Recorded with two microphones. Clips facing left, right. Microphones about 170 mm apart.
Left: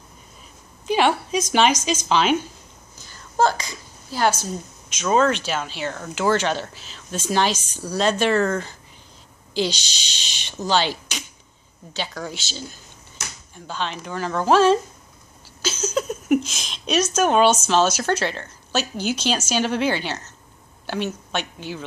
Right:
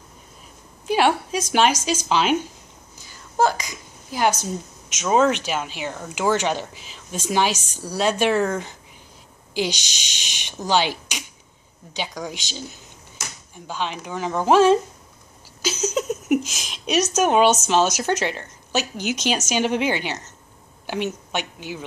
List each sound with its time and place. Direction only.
0.8 s a woman's voice: 10° right (ahead or behind)
3.0 s a sound: 10° right (ahead or behind)
4.1 s a woman's voice: 15° right (ahead or behind)
13.7 s a woman's voice: 10° right (ahead or behind)
15.6 s a sound: 10° right (ahead or behind)
16.3 s a woman's voice: 10° right (ahead or behind)